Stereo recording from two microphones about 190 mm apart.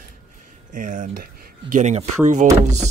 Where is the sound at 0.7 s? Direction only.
45° right (ahead or behind).